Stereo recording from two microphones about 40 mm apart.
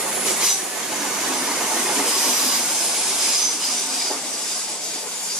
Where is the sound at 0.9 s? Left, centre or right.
Centre.